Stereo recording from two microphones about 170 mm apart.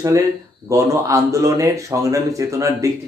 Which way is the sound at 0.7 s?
20° right (ahead or behind).